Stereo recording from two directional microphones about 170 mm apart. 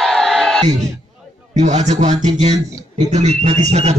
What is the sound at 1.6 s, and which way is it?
A man's voice, 40° right (ahead or behind).